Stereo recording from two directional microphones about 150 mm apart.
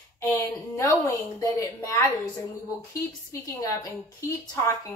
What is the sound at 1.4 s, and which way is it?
Speech, 20° left (ahead or behind).